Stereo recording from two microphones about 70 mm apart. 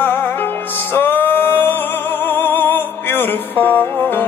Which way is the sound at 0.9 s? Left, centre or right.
Left.